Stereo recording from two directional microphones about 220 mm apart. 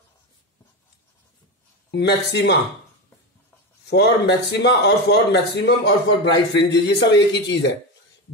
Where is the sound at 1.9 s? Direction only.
50° left (ahead or behind).